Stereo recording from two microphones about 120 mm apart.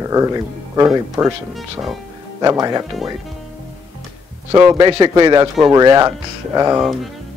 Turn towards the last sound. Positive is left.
turn(degrees=-30)  # may be behind; listen again after turning